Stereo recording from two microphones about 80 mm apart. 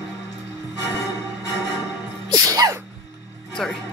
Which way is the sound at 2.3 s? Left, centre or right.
Right.